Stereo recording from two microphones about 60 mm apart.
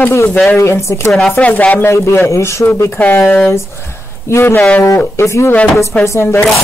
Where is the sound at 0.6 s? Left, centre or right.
Left.